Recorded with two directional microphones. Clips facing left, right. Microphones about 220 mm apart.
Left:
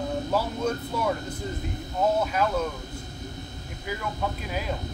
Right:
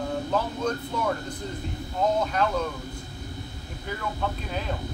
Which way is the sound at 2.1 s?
5° left (ahead or behind).